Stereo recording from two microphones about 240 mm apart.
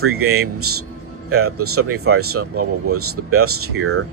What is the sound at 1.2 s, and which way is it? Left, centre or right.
Speech, right.